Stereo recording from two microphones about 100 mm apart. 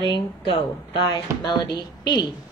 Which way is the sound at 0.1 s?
55° left (ahead or behind).